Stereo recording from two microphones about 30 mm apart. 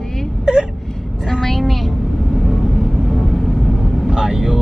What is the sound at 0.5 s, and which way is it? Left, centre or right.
Whimper, right.